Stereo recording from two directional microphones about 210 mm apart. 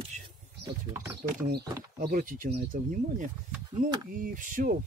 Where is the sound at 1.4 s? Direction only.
50° right (ahead or behind).